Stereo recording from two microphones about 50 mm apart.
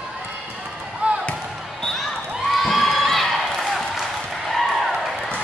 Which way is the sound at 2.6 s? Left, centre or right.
Centre.